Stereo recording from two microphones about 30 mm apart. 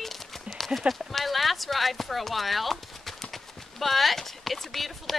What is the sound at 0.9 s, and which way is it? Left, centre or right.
Speech, centre.